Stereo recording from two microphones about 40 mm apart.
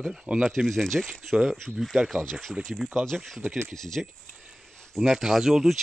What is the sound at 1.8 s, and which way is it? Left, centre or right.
Speech, centre.